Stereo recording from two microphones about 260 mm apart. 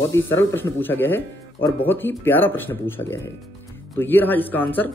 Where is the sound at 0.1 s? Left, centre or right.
Centre.